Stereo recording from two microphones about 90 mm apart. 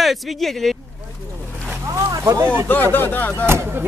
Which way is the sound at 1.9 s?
40° right (ahead or behind).